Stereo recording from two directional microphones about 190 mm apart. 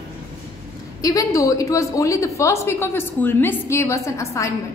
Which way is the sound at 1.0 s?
20° left (ahead or behind).